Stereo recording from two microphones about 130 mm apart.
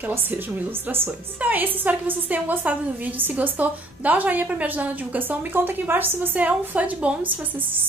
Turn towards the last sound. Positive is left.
turn(degrees=-15)  # may be behind; listen again after turning